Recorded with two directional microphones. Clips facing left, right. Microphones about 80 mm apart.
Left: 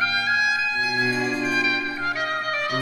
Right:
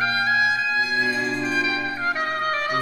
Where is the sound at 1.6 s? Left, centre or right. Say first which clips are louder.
Even; right.